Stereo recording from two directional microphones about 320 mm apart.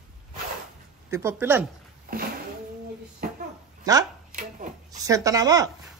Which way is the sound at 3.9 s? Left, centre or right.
Centre.